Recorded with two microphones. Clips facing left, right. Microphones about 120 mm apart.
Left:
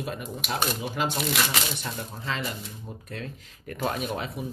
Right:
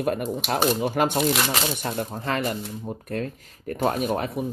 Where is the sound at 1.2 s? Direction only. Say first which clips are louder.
Right 5 dB; 35° right (ahead or behind).